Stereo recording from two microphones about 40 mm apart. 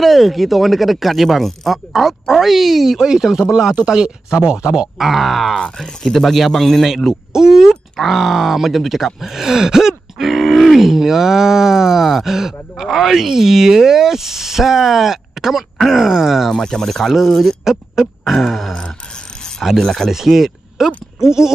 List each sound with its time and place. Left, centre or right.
0.0 s speech: centre
1.9 s speech: centre; by 4.8 s right
4.9 s speech: centre
5.6 s speech: centre
6.2 s speech: centre
6.5 s speech: centre
7.1 s speech: centre
8.0 s speech: centre
10.1 s speech: centre
16.4 s speech: centre
17.6 s speech: centre
19.8 s speech: centre
20.1 s speech: centre